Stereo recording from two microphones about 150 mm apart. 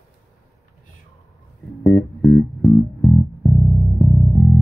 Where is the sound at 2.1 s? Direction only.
5° left (ahead or behind).